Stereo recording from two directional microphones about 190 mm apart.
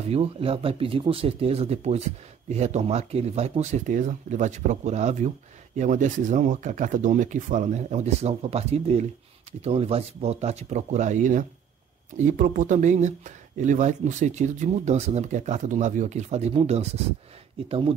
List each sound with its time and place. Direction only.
0.1 s speech: 30° right (ahead or behind)